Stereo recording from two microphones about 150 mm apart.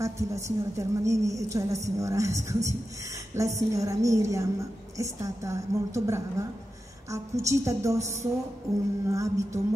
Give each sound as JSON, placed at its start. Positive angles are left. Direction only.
{"t": 0.0, "sound": "a woman's voice", "side_deg": -20}
{"t": 8.7, "sound": "music", "side_deg": 0}
{"t": 9.1, "sound": "a woman's voice", "side_deg": -20}